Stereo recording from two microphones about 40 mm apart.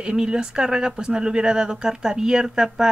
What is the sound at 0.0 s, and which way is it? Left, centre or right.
Speech, right.